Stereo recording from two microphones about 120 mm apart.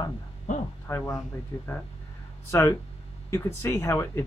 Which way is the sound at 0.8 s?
20° left (ahead or behind).